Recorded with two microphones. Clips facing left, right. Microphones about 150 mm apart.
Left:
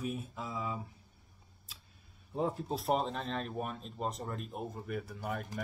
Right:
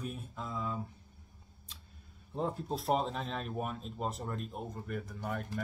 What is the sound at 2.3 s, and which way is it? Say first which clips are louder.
Speech: left 1 dB; 5° left (ahead or behind).